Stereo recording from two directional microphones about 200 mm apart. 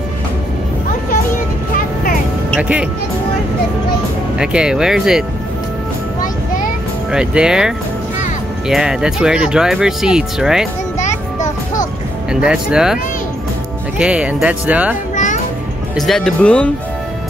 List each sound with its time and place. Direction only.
2.5 s speech: 5° right (ahead or behind)
4.4 s speech: 5° right (ahead or behind)
7.1 s speech: 5° right (ahead or behind)
11.0 s a sound: 35° left (ahead or behind)
12.3 s speech: 5° right (ahead or behind)
16.0 s speech: centre (ahead or behind)